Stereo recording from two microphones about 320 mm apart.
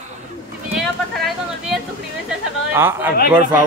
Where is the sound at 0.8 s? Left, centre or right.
Centre.